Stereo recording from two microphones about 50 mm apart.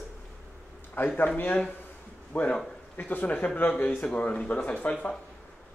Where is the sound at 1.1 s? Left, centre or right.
Left.